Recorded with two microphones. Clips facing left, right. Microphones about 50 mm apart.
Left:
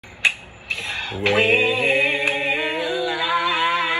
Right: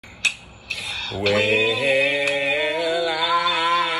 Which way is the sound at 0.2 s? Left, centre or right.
Left.